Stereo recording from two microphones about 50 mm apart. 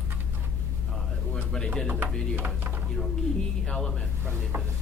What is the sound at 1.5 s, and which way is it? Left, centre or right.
Speech, centre.